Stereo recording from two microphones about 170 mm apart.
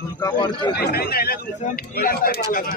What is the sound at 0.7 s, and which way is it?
Speech, 65° left (ahead or behind).